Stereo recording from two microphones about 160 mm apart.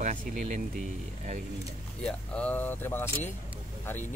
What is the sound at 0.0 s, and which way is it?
Speech, 55° right (ahead or behind).